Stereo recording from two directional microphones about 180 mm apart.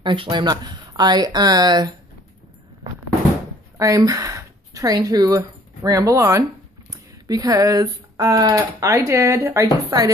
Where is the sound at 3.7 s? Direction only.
20° right (ahead or behind).